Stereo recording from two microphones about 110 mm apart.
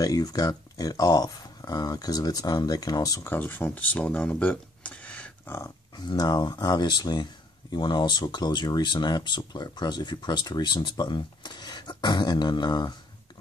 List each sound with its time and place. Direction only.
0.0 s speech: 35° left (ahead or behind)
3.3 s speech: 20° left (ahead or behind)
5.9 s speech: 40° left (ahead or behind)